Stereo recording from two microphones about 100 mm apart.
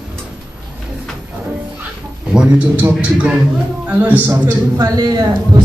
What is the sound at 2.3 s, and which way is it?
A woman's voice, 15° right (ahead or behind).